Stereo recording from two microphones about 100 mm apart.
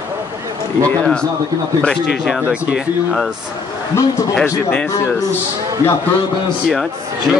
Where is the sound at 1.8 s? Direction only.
5° left (ahead or behind).